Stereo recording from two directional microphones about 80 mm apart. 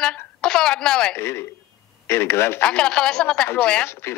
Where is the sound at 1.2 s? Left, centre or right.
Left.